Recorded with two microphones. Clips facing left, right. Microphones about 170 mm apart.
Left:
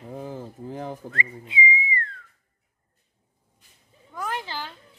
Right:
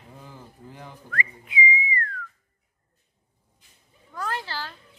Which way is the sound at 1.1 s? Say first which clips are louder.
Even; 25° left (ahead or behind).